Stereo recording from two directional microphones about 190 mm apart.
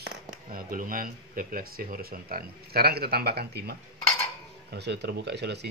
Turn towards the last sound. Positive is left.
turn(degrees=-60)  # may be behind; listen again after turning